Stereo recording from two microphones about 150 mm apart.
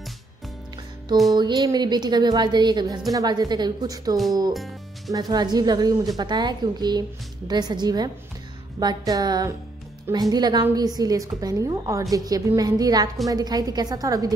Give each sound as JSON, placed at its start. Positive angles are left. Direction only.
{"t": 1.3, "sound": "a woman's voice", "side_deg": -25}